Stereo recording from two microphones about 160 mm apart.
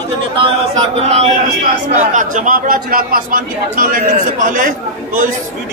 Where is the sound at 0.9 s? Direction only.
40° right (ahead or behind).